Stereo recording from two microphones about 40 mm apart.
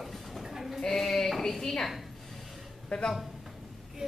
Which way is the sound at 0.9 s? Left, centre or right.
Centre.